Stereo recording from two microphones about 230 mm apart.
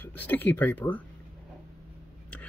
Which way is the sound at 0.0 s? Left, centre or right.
Centre.